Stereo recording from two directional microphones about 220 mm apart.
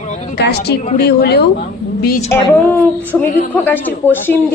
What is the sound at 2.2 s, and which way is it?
Speech, 10° left (ahead or behind).